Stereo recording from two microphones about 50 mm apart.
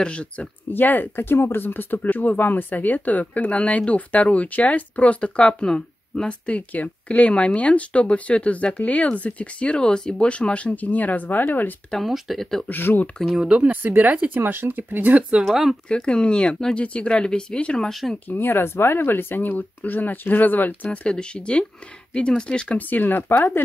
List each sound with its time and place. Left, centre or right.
0.0 s speech: left
0.7 s speech: left
11.9 s speech: centre
12.6 s speech: left
13.6 s speech: right
15.4 s speech: centre
15.9 s speech: centre
17.8 s speech: centre
18.3 s speech: left
21.0 s speech: centre
22.8 s speech: left